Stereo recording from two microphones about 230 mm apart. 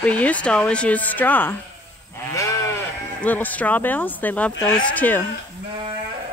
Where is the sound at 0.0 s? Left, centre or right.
Centre.